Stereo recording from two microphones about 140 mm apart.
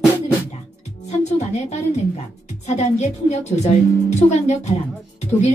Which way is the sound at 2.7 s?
55° left (ahead or behind).